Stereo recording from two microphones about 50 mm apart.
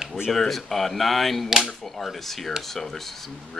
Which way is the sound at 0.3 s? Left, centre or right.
Centre.